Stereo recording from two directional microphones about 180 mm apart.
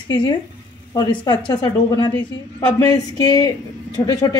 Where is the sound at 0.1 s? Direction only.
25° left (ahead or behind).